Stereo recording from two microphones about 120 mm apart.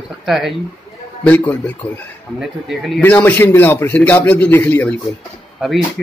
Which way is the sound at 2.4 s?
Centre (ahead or behind).